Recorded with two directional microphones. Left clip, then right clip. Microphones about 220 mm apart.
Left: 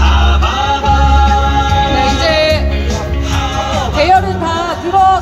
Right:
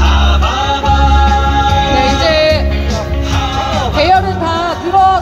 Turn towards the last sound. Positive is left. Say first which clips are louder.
# even
turn(degrees=5)  # may be behind; listen again after turning